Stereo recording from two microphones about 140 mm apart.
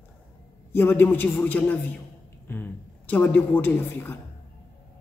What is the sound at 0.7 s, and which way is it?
A woman's voice, 15° left (ahead or behind).